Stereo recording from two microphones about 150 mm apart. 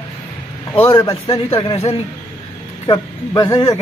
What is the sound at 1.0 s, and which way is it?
Speech, 40° left (ahead or behind).